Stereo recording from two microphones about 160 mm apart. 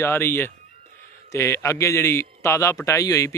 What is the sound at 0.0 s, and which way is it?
A man's voice, 15° left (ahead or behind).